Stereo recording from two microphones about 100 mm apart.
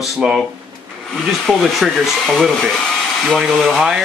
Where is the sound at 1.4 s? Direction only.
Centre (ahead or behind).